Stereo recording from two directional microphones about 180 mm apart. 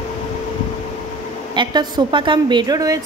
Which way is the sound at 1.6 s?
25° right (ahead or behind).